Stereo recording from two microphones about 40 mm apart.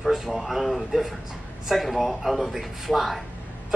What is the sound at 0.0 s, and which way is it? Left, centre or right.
A man's voice, centre.